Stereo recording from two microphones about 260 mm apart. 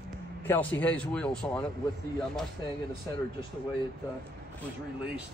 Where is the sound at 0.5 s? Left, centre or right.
Centre.